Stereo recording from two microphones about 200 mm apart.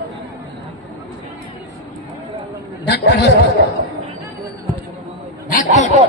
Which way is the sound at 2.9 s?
55° left (ahead or behind).